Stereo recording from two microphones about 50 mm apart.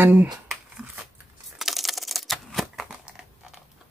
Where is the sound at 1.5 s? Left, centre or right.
Centre.